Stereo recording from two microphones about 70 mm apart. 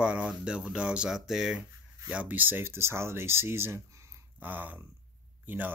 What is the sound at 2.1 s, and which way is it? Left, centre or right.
Speech, right.